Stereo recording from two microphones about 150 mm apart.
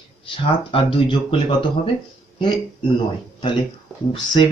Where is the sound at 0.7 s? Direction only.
35° left (ahead or behind).